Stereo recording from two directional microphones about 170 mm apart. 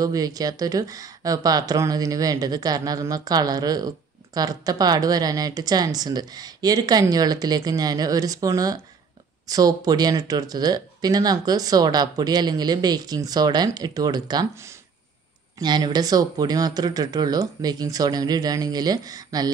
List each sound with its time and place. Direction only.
0.0 s speech: 20° right (ahead or behind)